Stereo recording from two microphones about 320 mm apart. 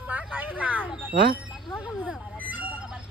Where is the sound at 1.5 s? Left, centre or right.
Centre.